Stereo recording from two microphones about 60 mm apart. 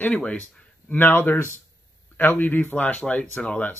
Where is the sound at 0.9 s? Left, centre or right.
Left.